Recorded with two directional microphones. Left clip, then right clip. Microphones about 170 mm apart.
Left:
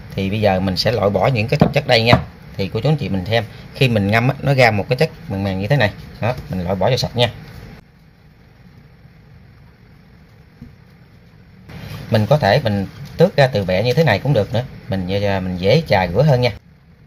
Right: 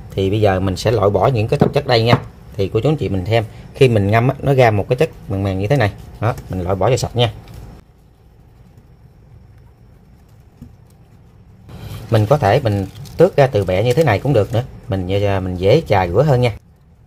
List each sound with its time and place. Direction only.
0.1 s speech: 45° right (ahead or behind)
12.1 s speech: 45° right (ahead or behind)